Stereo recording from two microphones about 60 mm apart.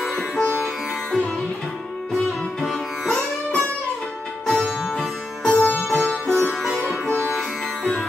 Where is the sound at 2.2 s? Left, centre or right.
Centre.